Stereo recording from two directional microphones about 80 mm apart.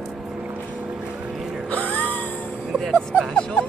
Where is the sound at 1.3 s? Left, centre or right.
Centre.